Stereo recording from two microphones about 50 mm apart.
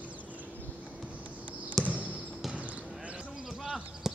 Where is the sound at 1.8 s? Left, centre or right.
Right.